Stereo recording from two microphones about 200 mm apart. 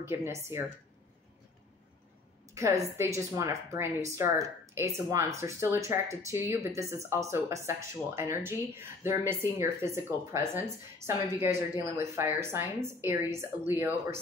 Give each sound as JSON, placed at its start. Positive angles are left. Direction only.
{"t": 0.0, "sound": "speech", "side_deg": -10}
{"t": 2.5, "sound": "speech", "side_deg": -15}